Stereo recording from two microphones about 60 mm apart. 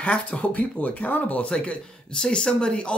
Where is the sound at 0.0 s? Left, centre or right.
Left.